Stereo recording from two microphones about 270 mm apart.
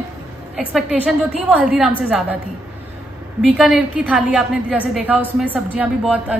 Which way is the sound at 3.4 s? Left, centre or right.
Centre.